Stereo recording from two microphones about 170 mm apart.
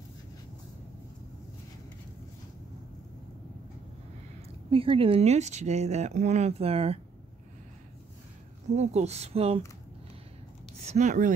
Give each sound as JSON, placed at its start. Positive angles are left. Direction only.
{"t": 4.6, "sound": "speech", "side_deg": -35}
{"t": 8.7, "sound": "speech", "side_deg": -40}
{"t": 10.9, "sound": "speech", "side_deg": -45}